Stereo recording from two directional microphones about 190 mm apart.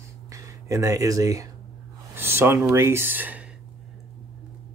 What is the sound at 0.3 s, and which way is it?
Speech, 15° right (ahead or behind).